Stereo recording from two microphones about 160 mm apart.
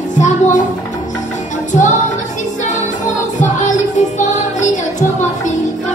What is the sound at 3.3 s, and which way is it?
Music, 50° left (ahead or behind).